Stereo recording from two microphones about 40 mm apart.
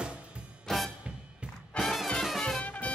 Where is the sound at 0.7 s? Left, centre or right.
Centre.